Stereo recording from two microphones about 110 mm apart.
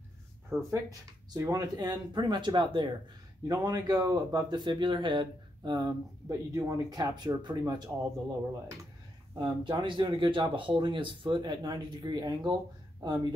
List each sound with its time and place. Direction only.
0.7 s speech: 30° right (ahead or behind)
3.4 s speech: 35° right (ahead or behind)
9.4 s speech: 45° right (ahead or behind)